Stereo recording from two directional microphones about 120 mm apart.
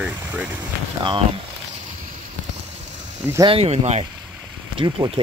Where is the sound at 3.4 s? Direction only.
55° right (ahead or behind).